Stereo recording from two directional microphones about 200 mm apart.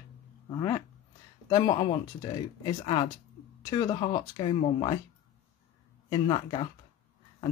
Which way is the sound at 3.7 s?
20° left (ahead or behind).